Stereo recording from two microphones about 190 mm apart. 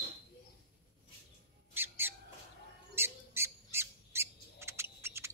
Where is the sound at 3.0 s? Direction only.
15° right (ahead or behind).